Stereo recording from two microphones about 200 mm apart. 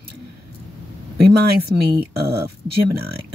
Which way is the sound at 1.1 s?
55° right (ahead or behind).